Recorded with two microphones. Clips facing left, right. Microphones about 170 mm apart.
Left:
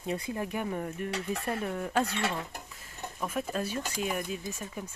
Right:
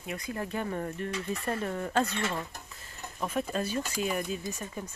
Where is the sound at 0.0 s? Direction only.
30° left (ahead or behind).